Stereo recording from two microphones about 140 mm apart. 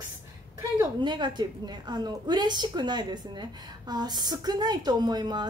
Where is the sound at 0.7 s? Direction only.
30° right (ahead or behind).